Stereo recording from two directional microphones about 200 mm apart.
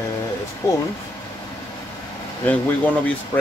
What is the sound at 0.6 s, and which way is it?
Speech, 15° left (ahead or behind).